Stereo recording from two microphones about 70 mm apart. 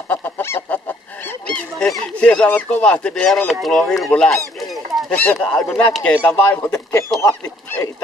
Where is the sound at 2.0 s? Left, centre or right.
Centre.